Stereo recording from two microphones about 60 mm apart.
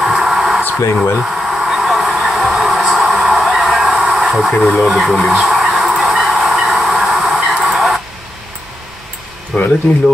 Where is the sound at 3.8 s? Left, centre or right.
Centre.